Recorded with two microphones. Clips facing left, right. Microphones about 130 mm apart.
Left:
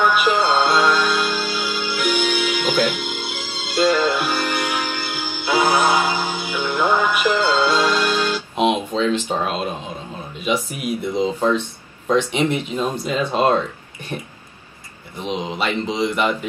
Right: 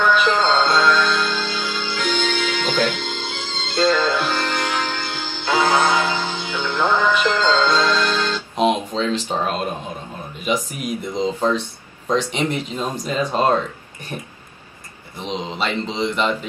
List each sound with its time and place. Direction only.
0.0 s music: 10° left (ahead or behind)
8.5 s music: 40° right (ahead or behind)
10.5 s speech: 45° right (ahead or behind)
11.1 s mantra: 10° left (ahead or behind)
12.9 s speech: 40° right (ahead or behind)
15.1 s mantra: 10° left (ahead or behind)